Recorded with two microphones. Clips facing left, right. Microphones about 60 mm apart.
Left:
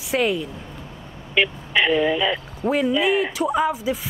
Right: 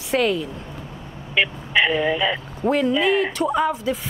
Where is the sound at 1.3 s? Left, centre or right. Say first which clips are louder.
Even; centre.